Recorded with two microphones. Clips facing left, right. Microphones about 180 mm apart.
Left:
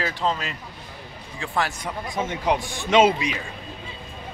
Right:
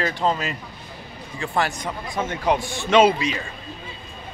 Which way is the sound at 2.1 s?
15° left (ahead or behind).